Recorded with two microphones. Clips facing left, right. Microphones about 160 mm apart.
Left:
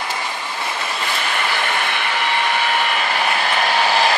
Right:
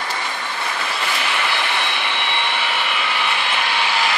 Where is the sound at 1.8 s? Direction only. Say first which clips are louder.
Left 2 dB; 45° left (ahead or behind).